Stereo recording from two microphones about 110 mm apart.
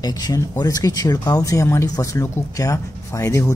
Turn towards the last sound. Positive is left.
turn(degrees=30)  # may be behind; listen again after turning